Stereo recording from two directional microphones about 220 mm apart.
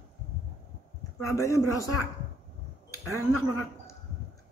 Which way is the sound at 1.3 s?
15° left (ahead or behind).